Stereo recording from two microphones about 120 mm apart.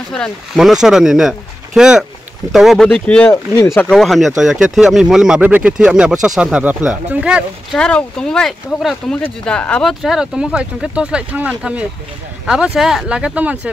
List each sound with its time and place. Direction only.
0.1 s speech: centre (ahead or behind)
3.5 s speech: 20° left (ahead or behind)
3.9 s speech: centre (ahead or behind)
7.7 s speech: 5° left (ahead or behind); by 13.6 s 10° right (ahead or behind)